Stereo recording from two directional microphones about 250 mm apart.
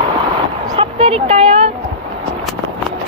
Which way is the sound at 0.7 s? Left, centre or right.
Right.